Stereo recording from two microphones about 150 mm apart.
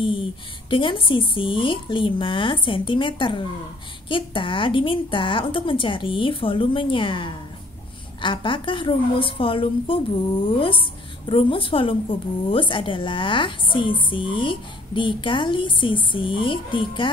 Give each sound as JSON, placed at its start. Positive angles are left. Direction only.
{"t": 0.7, "sound": "a woman's voice", "side_deg": 35}